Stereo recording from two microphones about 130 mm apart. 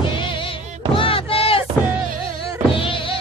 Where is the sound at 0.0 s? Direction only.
40° left (ahead or behind).